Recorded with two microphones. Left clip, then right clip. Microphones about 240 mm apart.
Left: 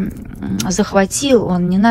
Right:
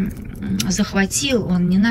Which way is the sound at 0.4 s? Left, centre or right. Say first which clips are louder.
Left 4 dB; centre.